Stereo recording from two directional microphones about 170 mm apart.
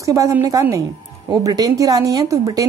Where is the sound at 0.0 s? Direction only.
20° right (ahead or behind).